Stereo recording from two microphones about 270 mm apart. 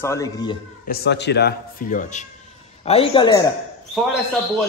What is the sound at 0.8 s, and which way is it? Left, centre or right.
A man's voice, left.